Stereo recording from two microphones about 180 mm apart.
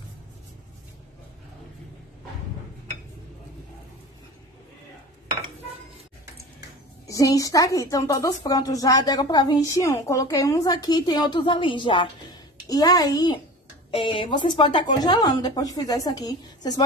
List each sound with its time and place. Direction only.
7.1 s a woman's voice: 20° left (ahead or behind)